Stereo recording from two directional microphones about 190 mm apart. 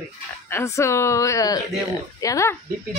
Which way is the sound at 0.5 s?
15° left (ahead or behind).